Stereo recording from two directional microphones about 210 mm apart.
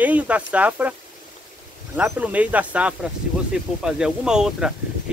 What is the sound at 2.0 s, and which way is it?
Speech, 5° right (ahead or behind).